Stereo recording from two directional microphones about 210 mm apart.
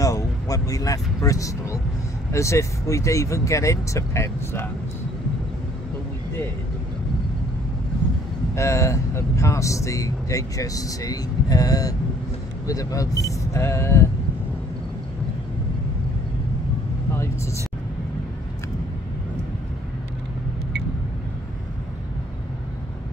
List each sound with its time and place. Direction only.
0.0 s speech: 15° left (ahead or behind)
8.5 s speech: 15° left (ahead or behind)